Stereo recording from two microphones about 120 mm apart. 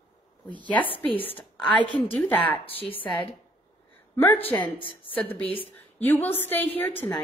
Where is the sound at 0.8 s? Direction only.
45° left (ahead or behind).